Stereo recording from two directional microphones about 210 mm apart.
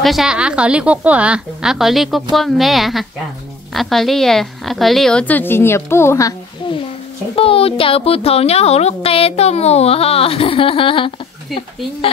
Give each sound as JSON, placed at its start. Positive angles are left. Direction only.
{"t": 0.0, "sound": "a woman's voice", "side_deg": 0}
{"t": 7.3, "sound": "speech", "side_deg": 25}